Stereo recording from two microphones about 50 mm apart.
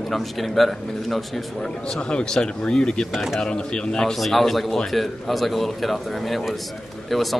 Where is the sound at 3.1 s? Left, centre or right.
Centre.